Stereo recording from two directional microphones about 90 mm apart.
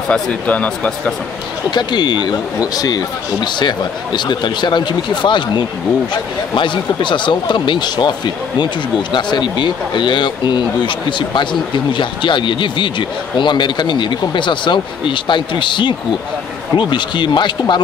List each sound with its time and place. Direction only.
0.1 s speech: 15° left (ahead or behind)
1.7 s speech: 55° left (ahead or behind)
9.1 s speech: 60° left (ahead or behind)